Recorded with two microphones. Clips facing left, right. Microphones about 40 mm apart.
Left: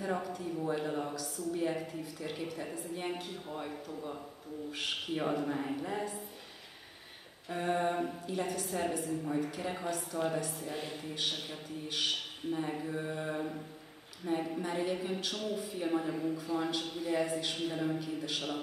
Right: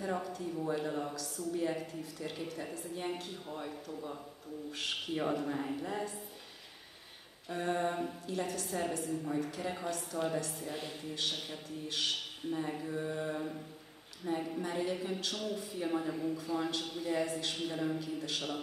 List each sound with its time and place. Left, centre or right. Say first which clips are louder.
0.0 s speech: left 1 dB; centre
7.4 s speech: left 2 dB; centre
17.9 s speech: left 1 dB; centre